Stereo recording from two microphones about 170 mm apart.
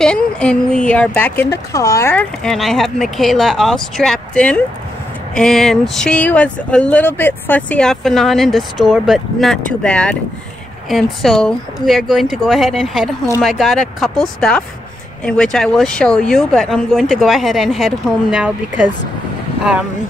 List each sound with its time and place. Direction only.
0.0 s speech: 5° left (ahead or behind)
2.4 s speech: centre (ahead or behind)